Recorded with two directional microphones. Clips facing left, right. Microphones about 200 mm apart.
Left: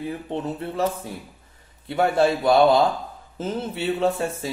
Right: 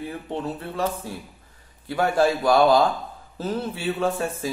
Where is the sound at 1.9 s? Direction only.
25° left (ahead or behind).